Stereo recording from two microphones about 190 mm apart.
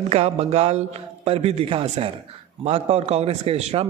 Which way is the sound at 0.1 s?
35° right (ahead or behind).